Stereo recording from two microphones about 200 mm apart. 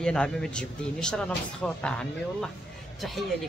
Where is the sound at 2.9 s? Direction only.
Centre (ahead or behind).